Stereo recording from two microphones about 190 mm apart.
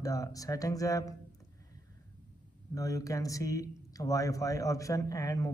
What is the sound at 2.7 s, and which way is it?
Speech, 20° left (ahead or behind).